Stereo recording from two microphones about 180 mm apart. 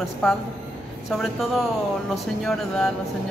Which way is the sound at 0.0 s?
Centre (ahead or behind).